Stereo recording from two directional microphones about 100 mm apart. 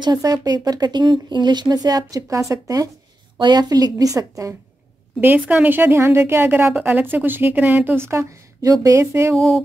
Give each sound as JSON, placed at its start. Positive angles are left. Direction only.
{"t": 0.0, "sound": "speech", "side_deg": -40}
{"t": 3.3, "sound": "speech", "side_deg": -50}
{"t": 5.2, "sound": "a woman's voice", "side_deg": -15}